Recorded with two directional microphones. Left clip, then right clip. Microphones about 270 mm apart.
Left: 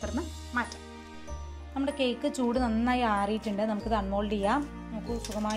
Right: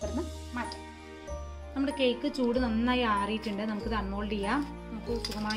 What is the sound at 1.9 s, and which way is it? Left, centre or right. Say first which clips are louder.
Speech: right 1 dB; centre.